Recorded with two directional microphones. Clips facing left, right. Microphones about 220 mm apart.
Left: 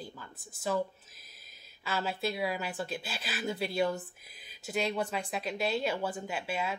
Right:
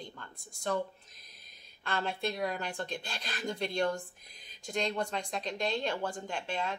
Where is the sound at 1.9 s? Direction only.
5° left (ahead or behind).